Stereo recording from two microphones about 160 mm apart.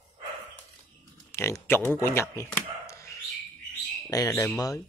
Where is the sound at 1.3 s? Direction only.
15° left (ahead or behind).